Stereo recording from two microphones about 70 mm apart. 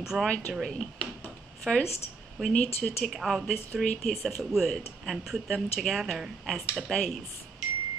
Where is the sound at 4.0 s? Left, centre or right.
Centre.